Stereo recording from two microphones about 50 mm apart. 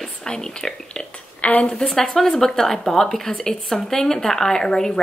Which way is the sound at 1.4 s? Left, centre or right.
Left.